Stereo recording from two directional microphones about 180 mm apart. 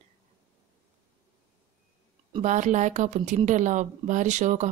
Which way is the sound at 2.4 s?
40° right (ahead or behind).